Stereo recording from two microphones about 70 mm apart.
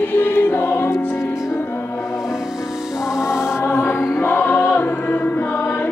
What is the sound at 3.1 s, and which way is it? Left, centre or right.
Music, centre.